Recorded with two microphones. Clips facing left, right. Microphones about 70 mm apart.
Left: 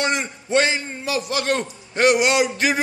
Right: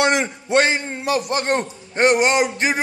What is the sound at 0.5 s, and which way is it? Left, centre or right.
A man's voice, right.